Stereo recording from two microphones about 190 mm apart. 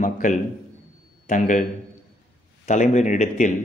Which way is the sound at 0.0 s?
45° left (ahead or behind).